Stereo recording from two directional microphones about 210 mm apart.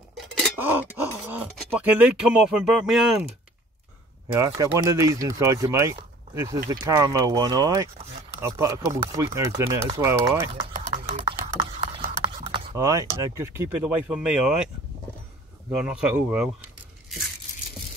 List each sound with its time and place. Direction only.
0.2 s a sound: centre (ahead or behind)
1.3 s speech: 5° right (ahead or behind)
4.4 s speech: 15° right (ahead or behind)
10.9 s a sound: 30° right (ahead or behind)
11.8 s clip-clop: 25° right (ahead or behind)
12.4 s typing: 25° right (ahead or behind)
12.7 s speech: 15° right (ahead or behind)
15.8 s speech: 5° right (ahead or behind)